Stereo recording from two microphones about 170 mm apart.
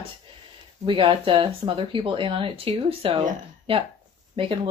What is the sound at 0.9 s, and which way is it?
Speech, 30° right (ahead or behind).